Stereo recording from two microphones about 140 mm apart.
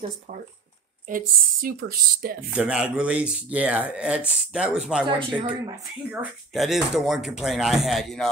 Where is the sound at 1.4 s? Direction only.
90° right.